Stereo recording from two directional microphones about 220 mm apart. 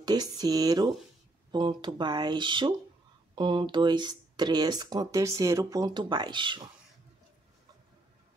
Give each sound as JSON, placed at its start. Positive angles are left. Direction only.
{"t": 0.0, "sound": "speech", "side_deg": -20}